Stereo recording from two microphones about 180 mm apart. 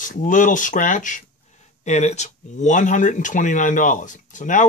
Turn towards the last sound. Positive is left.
turn(degrees=45)  # may be behind; listen again after turning